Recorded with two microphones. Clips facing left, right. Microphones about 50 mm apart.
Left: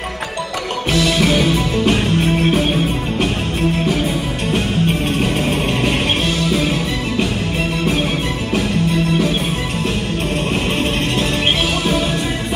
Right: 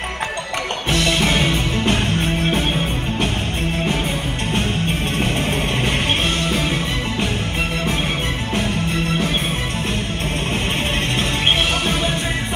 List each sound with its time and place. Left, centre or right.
0.9 s music: right
5.9 s music: right